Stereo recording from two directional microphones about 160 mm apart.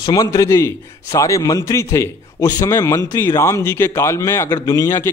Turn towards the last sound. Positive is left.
turn(degrees=15)  # may be behind; listen again after turning